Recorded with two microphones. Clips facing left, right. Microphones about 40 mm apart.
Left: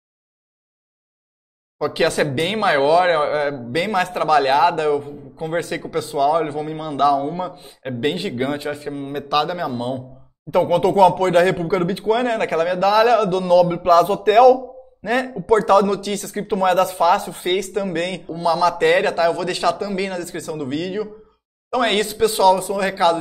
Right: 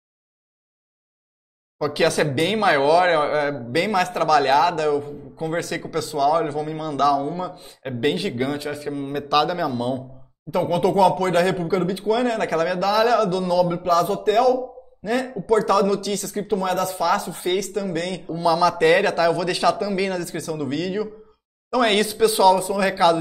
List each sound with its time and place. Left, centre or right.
1.8 s a man's voice: centre
10.5 s a man's voice: left
10.8 s a man's voice: centre
13.8 s a man's voice: left
15.2 s a man's voice: left
18.2 s a man's voice: centre